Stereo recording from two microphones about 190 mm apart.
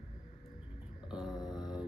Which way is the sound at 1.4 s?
Centre (ahead or behind).